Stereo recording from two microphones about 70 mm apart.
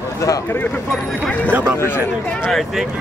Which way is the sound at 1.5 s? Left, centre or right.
Right.